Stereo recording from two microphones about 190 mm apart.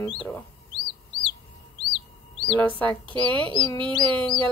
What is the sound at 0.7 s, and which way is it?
Chicken, 25° left (ahead or behind).